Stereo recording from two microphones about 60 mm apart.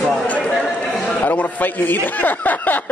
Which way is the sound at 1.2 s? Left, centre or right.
Left.